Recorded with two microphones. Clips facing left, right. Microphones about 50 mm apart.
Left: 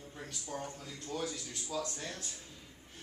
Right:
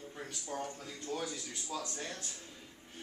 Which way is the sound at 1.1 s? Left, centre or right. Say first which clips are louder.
Left 1 dB; centre.